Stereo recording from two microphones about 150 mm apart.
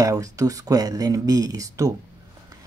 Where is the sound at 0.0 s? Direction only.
20° right (ahead or behind).